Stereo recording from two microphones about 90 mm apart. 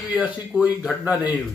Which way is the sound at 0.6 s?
15° right (ahead or behind).